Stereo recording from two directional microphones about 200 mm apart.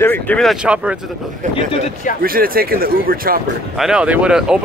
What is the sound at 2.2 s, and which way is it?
Speech, 45° right (ahead or behind).